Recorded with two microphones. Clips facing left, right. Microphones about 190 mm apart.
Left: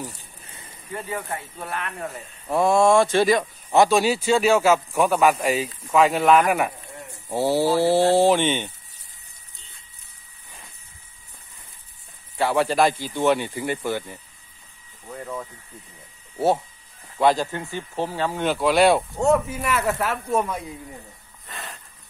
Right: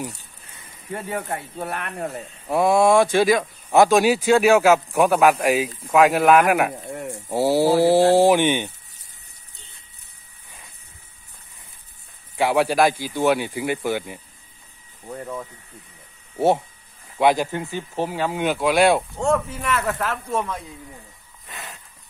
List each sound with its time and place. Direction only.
1.0 s speech: 65° right (ahead or behind)
2.4 s speech: 10° right (ahead or behind)
12.4 s speech: 15° right (ahead or behind)
17.2 s speech: 15° right (ahead or behind)
19.1 s speech: 10° left (ahead or behind)